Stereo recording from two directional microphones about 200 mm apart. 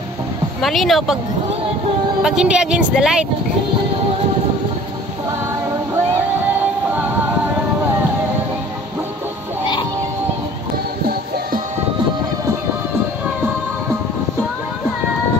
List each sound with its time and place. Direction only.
0.6 s speech: centre (ahead or behind)
2.2 s speech: 5° right (ahead or behind)
6.6 s music: 10° right (ahead or behind)
11.1 s music: 50° right (ahead or behind)